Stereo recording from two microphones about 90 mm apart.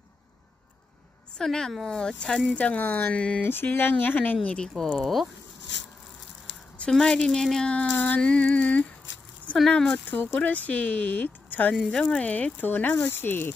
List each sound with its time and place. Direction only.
1.4 s speech: 5° left (ahead or behind)
3.4 s speech: 25° left (ahead or behind); by 5.3 s centre (ahead or behind)
6.8 s speech: 5° left (ahead or behind)
10.0 s speech: 20° left (ahead or behind)